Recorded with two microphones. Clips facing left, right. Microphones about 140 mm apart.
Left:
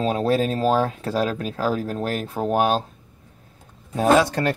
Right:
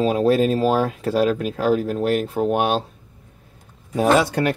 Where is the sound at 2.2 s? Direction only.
35° left (ahead or behind).